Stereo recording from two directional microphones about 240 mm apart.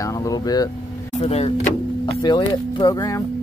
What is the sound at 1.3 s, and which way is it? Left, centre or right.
Speech, left.